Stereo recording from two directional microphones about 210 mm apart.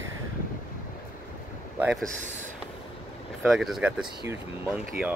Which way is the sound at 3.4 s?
Centre (ahead or behind).